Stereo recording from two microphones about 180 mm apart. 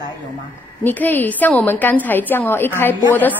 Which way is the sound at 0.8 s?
10° left (ahead or behind).